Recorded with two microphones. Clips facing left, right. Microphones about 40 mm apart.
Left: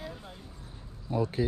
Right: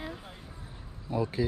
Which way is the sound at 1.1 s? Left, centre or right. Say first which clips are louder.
Left 1 dB; right.